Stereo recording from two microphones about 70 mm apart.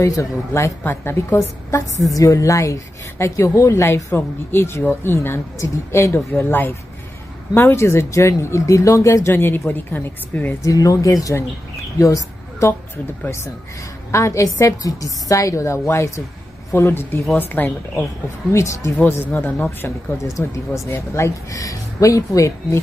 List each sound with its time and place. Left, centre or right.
0.0 s speech: left
0.8 s speech: left
2.0 s speech: left
6.3 s a woman's voice: left
9.3 s a woman's voice: left
10.6 s speech: left
12.9 s speech: left
14.1 s a woman's voice: left
18.5 s speech: left
19.0 s a woman's voice: left
20.2 s speech: left